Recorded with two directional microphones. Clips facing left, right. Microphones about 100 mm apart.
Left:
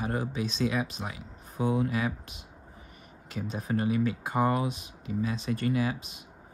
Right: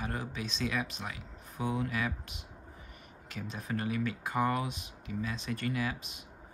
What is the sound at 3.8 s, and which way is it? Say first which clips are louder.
Speech: left 6 dB; 20° left (ahead or behind).